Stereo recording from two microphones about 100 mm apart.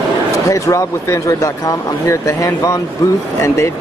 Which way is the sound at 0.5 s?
30° left (ahead or behind).